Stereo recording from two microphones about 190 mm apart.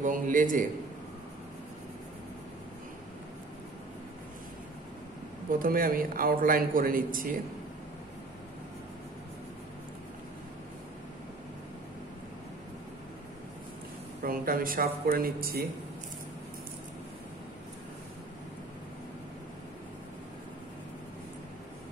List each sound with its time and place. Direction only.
0.0 s a man's voice: 45° right (ahead or behind)
5.5 s a man's voice: 50° right (ahead or behind)
14.2 s a man's voice: 50° right (ahead or behind)